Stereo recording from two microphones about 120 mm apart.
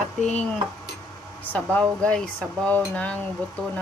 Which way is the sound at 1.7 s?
10° left (ahead or behind).